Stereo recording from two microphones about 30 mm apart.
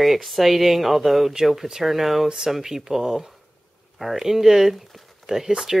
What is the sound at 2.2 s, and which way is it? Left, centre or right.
Speech, centre.